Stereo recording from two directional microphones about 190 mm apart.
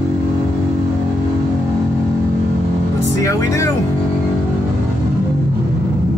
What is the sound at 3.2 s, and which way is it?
Speech, 15° left (ahead or behind).